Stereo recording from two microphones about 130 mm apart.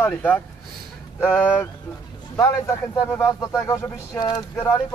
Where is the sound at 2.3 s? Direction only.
20° left (ahead or behind).